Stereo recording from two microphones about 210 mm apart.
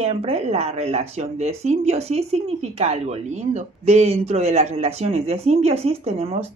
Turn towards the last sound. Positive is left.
turn(degrees=-30)  # may be behind; listen again after turning